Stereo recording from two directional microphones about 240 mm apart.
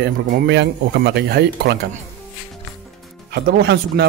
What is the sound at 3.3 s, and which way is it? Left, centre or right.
Speech, right.